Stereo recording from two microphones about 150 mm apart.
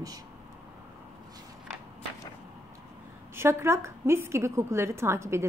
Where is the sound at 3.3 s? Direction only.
15° right (ahead or behind).